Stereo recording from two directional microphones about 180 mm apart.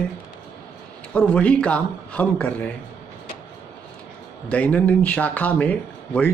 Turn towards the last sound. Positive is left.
turn(degrees=10)  # may be behind; listen again after turning